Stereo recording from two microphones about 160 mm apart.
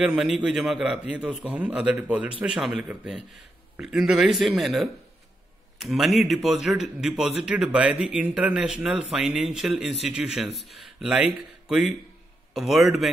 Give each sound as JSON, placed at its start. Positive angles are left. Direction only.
{"t": 0.0, "sound": "a man's voice", "side_deg": -5}